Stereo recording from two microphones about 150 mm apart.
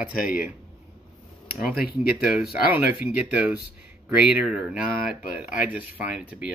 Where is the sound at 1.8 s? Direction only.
90° left.